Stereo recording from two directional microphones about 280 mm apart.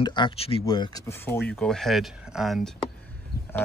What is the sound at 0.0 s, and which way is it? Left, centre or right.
Speech, centre.